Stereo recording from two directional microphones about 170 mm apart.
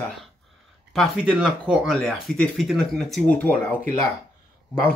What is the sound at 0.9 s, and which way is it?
Speech, 5° right (ahead or behind).